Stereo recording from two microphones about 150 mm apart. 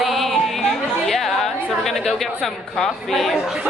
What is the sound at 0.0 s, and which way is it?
Chatter, centre (ahead or behind).